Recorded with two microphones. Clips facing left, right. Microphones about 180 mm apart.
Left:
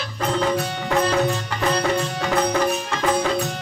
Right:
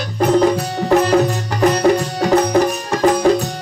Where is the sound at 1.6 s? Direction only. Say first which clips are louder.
Right 9 dB; 40° right (ahead or behind).